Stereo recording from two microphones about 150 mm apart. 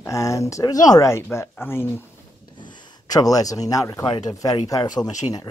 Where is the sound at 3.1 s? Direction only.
25° left (ahead or behind).